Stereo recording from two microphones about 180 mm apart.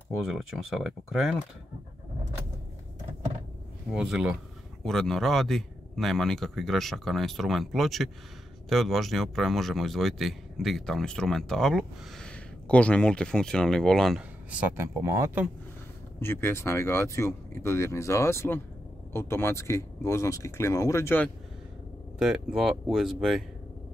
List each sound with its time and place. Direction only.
0.2 s speech: centre (ahead or behind)
3.9 s speech: 5° right (ahead or behind)
14.8 s speech: 15° right (ahead or behind)
16.2 s speech: 15° left (ahead or behind)
22.2 s speech: 5° right (ahead or behind)